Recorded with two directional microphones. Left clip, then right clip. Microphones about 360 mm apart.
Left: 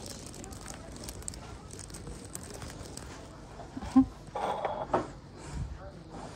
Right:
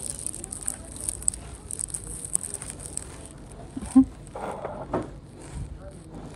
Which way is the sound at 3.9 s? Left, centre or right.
Right.